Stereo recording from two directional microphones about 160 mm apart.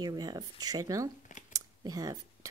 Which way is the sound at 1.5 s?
20° right (ahead or behind).